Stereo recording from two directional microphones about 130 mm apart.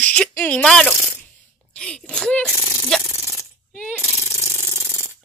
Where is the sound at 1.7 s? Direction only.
5° left (ahead or behind).